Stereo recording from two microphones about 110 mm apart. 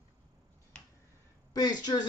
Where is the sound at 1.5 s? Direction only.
35° left (ahead or behind).